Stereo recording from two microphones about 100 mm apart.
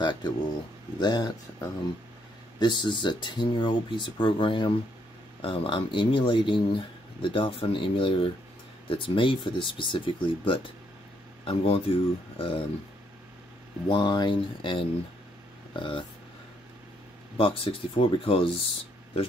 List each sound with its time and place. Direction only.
0.0 s speech: 50° left (ahead or behind)
2.6 s speech: 50° left (ahead or behind)
11.4 s speech: 70° left (ahead or behind)
13.8 s speech: 50° left (ahead or behind)
17.4 s speech: 65° left (ahead or behind)